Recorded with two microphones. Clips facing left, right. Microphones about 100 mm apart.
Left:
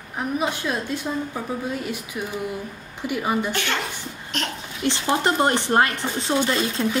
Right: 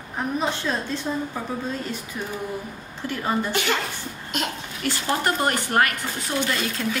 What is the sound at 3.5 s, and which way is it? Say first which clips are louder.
Speech: right 2 dB; 5° right (ahead or behind).